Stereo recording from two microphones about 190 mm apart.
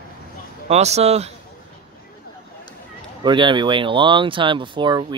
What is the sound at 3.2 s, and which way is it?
Speech, 25° right (ahead or behind).